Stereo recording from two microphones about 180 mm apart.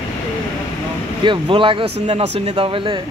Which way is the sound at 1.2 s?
30° right (ahead or behind).